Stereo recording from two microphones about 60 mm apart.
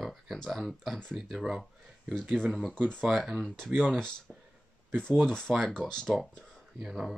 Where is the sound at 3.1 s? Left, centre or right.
Centre.